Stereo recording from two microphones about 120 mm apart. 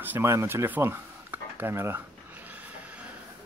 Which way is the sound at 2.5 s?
10° right (ahead or behind).